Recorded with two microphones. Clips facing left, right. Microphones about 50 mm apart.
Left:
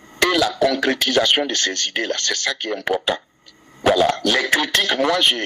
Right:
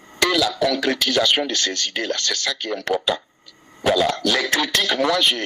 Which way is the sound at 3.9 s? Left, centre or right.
Left.